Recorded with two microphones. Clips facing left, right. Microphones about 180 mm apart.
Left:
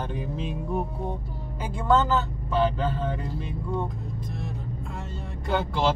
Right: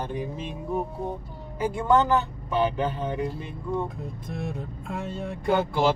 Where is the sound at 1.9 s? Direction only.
15° right (ahead or behind).